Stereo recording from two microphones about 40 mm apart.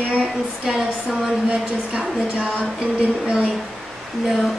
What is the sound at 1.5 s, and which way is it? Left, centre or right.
A woman's voice, right.